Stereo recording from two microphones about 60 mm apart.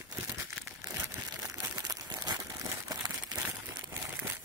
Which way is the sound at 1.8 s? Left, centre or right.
Right.